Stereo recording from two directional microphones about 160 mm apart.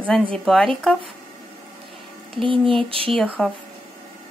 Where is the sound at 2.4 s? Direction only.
35° right (ahead or behind).